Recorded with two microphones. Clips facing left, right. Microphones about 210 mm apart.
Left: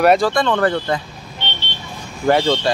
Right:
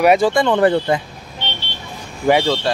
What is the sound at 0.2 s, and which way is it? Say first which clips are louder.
Speech: right 3 dB; 20° right (ahead or behind).